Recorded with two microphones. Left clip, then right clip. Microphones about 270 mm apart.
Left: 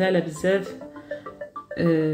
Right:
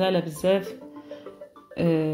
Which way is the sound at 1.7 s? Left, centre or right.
Centre.